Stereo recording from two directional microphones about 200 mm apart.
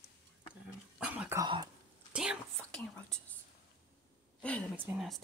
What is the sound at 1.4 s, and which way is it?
Throat clearing, 20° right (ahead or behind).